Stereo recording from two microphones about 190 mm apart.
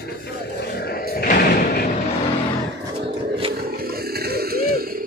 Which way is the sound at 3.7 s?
55° right (ahead or behind).